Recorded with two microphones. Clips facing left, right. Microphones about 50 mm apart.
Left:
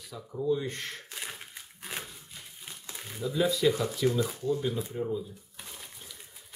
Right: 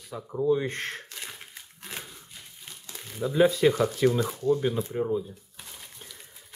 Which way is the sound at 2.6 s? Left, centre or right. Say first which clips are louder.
Left 1 dB; centre.